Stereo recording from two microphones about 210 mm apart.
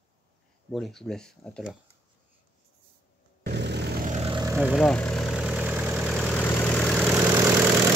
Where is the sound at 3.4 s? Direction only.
55° right (ahead or behind).